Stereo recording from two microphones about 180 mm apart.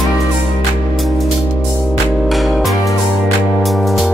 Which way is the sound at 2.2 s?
Centre (ahead or behind).